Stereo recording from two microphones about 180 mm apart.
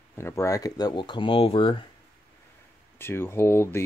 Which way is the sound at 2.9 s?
15° left (ahead or behind).